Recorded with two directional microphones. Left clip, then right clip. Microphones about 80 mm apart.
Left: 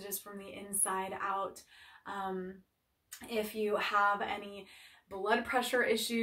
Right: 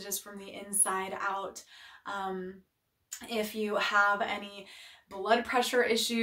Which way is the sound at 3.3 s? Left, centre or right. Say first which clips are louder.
Right 1 dB; right.